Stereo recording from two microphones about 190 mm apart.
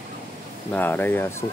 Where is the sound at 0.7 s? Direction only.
10° left (ahead or behind).